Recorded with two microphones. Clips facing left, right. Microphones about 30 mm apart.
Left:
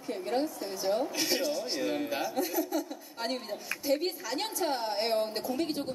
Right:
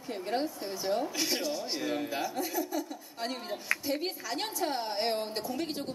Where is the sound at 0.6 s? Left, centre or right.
Centre.